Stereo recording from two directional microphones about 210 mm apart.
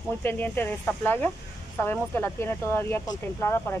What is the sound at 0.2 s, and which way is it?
Speech, 10° left (ahead or behind).